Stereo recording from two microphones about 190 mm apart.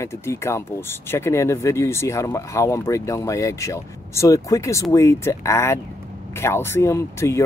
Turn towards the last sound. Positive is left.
turn(degrees=15)  # may be behind; listen again after turning